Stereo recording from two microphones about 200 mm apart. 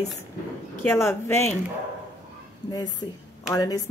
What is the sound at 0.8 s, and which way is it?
Speech, 10° left (ahead or behind).